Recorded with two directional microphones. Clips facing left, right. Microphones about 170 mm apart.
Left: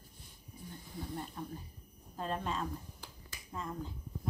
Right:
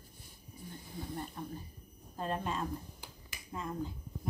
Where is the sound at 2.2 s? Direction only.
5° right (ahead or behind).